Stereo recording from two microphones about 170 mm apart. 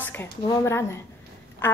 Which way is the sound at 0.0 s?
10° left (ahead or behind).